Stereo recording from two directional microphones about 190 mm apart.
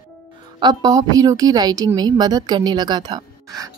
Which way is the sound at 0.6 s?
20° right (ahead or behind).